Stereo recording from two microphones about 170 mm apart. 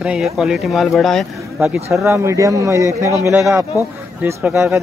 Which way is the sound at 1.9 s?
15° right (ahead or behind).